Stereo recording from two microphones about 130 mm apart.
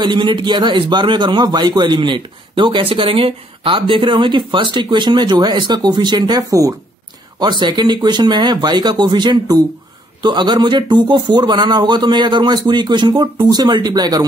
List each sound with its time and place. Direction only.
0.0 s a man's voice: 35° right (ahead or behind)